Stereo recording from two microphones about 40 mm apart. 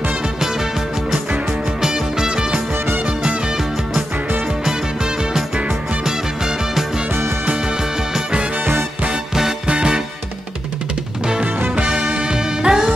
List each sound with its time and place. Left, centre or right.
1.8 s music: centre
6.0 s music: centre
9.7 s music: right
11.7 s music: right